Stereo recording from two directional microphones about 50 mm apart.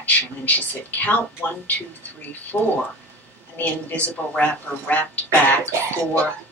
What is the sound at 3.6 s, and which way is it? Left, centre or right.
Speech, left.